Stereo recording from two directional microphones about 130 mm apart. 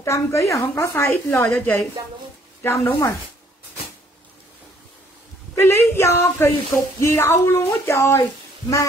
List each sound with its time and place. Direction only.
0.0 s speech: 20° left (ahead or behind)
5.5 s speech: 20° left (ahead or behind)